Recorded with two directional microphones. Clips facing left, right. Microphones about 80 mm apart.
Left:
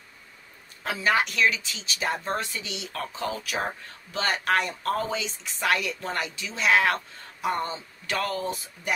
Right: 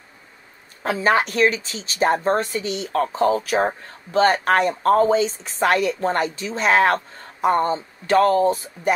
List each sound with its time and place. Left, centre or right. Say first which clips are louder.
0.8 s speech: right 6 dB; right